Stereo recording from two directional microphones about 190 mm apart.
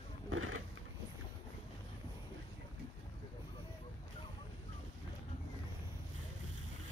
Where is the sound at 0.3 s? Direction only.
90° right.